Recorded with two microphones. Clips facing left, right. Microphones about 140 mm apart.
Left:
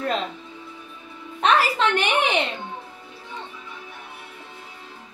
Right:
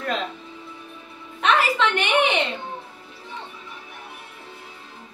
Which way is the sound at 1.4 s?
35° left (ahead or behind).